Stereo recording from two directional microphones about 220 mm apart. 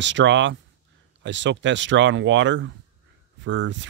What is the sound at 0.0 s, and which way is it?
Speech, 55° right (ahead or behind).